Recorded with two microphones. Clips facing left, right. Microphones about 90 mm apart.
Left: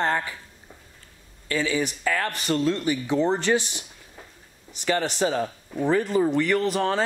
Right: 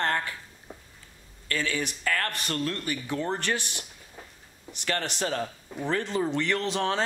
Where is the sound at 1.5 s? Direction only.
15° left (ahead or behind).